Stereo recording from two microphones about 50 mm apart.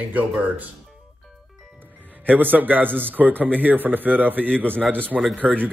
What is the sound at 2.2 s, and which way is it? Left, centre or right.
Speech, right.